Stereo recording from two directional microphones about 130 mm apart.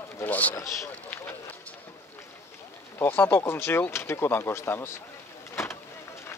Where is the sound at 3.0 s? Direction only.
15° left (ahead or behind).